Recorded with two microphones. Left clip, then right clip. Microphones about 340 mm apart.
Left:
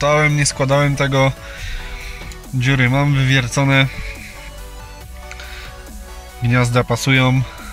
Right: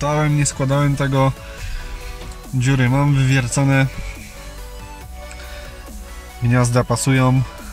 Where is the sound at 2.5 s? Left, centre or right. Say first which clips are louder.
Left 3 dB; centre.